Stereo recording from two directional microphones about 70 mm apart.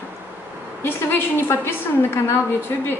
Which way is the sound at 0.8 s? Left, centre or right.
Left.